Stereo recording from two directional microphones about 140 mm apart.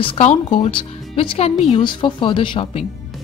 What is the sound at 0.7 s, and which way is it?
Speech, 40° left (ahead or behind).